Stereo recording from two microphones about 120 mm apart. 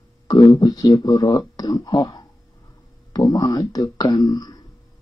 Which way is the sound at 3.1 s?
40° left (ahead or behind).